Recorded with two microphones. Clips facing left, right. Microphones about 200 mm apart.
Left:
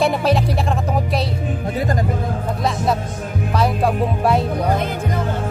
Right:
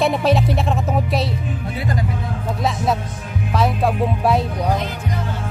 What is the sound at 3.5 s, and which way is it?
Speech, centre (ahead or behind).